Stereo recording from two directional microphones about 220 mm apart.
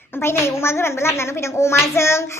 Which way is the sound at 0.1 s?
10° left (ahead or behind).